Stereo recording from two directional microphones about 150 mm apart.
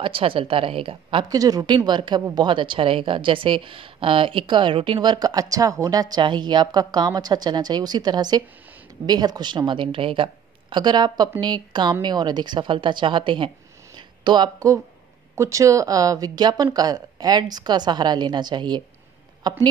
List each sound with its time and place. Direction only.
0.0 s a woman's voice: 35° right (ahead or behind)